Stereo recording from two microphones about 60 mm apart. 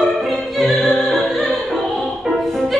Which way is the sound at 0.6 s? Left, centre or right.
Centre.